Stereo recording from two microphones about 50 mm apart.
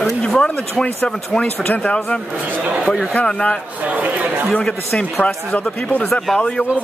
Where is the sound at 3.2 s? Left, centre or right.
Centre.